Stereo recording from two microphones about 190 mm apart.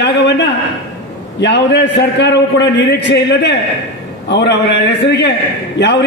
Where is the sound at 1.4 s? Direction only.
65° left (ahead or behind).